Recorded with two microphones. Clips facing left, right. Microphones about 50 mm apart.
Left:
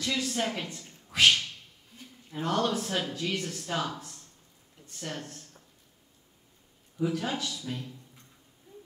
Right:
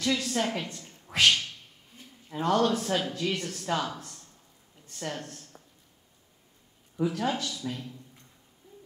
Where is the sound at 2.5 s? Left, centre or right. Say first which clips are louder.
Right 3 dB; centre.